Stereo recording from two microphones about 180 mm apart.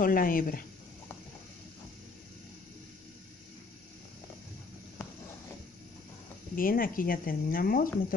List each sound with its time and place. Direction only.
0.0 s speech: 50° left (ahead or behind)
6.5 s speech: 50° left (ahead or behind)